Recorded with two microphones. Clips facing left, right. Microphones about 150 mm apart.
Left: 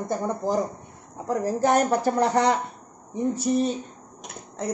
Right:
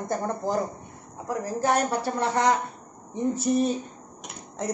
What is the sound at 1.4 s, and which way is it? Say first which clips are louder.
A woman's voice: left 3 dB; 40° left (ahead or behind).